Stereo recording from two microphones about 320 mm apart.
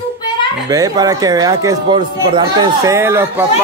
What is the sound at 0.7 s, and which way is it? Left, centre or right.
A man's voice, centre.